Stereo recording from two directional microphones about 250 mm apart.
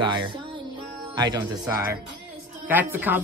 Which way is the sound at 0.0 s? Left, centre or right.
Centre.